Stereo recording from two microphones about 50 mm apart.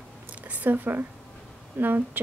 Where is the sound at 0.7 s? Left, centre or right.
Right.